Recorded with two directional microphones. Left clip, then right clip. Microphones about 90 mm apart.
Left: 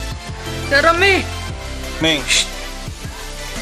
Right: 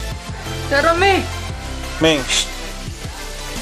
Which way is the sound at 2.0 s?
Centre (ahead or behind).